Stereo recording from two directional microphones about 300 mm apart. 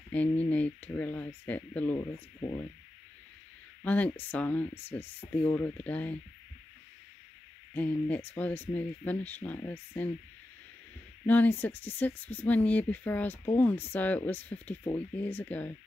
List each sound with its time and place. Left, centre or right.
0.1 s speech: centre
3.8 s speech: centre
7.7 s speech: centre
11.2 s speech: centre